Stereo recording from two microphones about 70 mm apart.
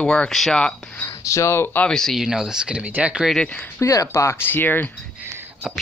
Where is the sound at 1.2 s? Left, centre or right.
Left.